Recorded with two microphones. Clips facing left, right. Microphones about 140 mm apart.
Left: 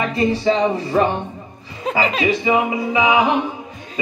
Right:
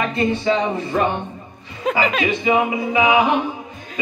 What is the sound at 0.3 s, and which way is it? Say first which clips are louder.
Speech: left 2 dB; 30° left (ahead or behind).